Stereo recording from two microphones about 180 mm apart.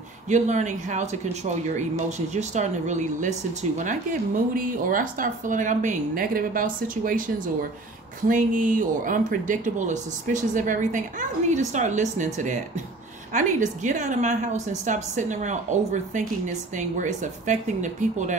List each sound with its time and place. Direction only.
0.3 s speech: 40° right (ahead or behind)
8.3 s speech: 45° right (ahead or behind)